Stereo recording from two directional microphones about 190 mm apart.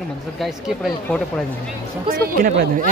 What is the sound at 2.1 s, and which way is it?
Speech, 50° right (ahead or behind).